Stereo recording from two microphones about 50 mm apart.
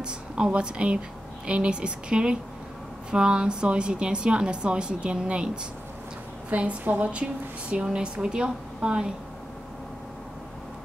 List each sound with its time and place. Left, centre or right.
0.5 s a woman's voice: right